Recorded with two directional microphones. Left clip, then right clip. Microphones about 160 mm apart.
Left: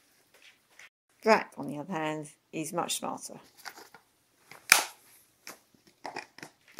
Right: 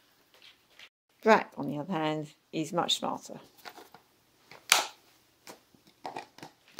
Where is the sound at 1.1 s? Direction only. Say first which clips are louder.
Right 1 dB; 5° right (ahead or behind).